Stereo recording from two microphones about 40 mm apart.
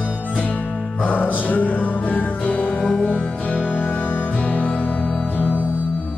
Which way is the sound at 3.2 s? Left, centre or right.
Left.